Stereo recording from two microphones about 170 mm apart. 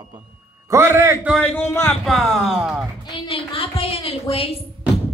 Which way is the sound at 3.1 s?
30° left (ahead or behind).